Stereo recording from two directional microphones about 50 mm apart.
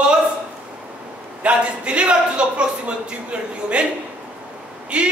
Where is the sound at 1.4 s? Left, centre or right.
Right.